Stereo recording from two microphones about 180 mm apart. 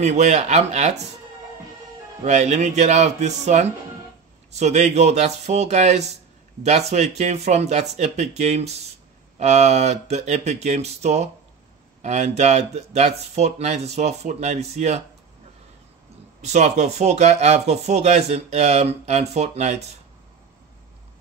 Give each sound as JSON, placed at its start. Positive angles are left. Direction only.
{"t": 0.0, "sound": "speech", "side_deg": -40}
{"t": 2.2, "sound": "speech", "side_deg": -40}
{"t": 16.3, "sound": "speech", "side_deg": -40}